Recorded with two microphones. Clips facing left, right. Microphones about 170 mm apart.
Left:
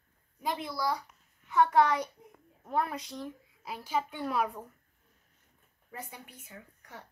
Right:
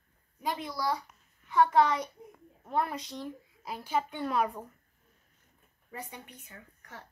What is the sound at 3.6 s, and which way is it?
Speech, 5° left (ahead or behind).